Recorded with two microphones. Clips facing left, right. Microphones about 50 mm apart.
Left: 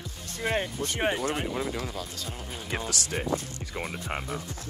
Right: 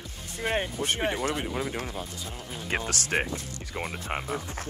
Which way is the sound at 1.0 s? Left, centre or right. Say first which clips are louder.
Left 3 dB; left.